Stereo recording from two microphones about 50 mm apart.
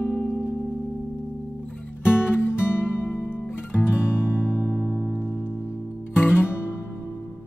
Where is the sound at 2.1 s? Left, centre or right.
Left.